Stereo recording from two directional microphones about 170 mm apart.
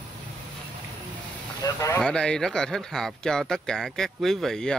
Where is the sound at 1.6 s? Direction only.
20° left (ahead or behind).